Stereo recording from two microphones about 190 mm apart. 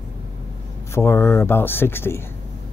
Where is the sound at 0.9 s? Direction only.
15° left (ahead or behind).